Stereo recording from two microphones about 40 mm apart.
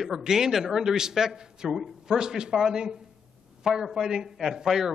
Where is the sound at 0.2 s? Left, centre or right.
Centre.